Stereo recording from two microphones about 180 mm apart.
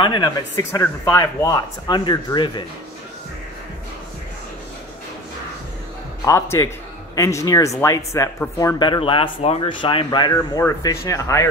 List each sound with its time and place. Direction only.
0.0 s speech: 25° left (ahead or behind)
0.6 s speech: 15° left (ahead or behind)
6.2 s speech: 15° left (ahead or behind)